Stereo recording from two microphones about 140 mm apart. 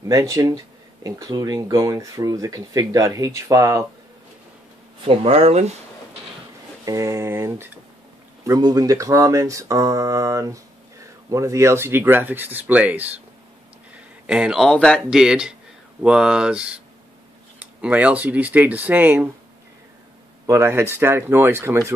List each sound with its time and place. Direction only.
0.0 s speech: 25° right (ahead or behind)
5.0 s speech: 45° right (ahead or behind)
6.8 s speech: 25° right (ahead or behind)
14.2 s speech: 5° right (ahead or behind)
20.4 s speech: 20° right (ahead or behind)